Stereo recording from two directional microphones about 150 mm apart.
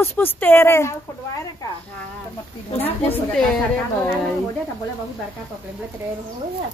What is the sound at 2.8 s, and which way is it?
Speech, 10° left (ahead or behind).